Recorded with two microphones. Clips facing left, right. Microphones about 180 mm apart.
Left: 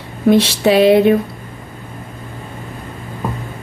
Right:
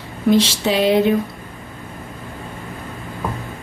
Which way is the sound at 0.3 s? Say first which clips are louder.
Left 4 dB; 60° left (ahead or behind).